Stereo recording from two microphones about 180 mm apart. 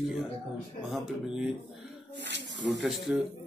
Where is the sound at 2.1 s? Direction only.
75° right (ahead or behind).